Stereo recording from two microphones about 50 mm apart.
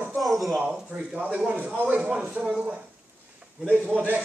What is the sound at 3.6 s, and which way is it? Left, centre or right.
Speech, right.